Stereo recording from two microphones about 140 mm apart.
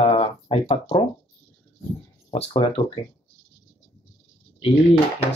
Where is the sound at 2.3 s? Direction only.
45° left (ahead or behind).